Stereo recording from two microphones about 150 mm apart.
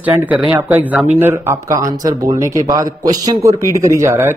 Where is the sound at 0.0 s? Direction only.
10° right (ahead or behind).